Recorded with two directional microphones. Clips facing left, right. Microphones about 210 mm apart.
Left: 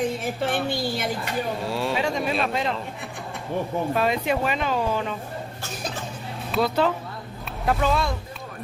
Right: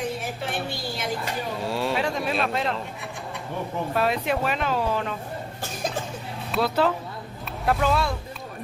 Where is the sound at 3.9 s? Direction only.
Centre (ahead or behind).